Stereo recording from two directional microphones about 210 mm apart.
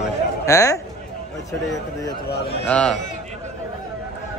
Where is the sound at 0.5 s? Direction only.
15° left (ahead or behind).